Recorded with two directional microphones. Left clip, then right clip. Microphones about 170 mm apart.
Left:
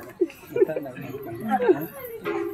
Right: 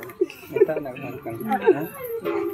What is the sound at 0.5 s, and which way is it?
Speech, 15° right (ahead or behind).